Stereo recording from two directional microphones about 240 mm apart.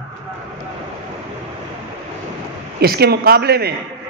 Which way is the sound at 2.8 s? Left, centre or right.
Right.